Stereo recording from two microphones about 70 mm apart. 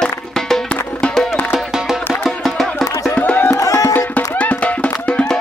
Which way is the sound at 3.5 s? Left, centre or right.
Left.